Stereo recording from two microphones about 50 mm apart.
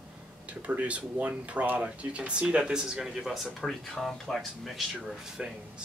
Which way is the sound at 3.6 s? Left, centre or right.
Centre.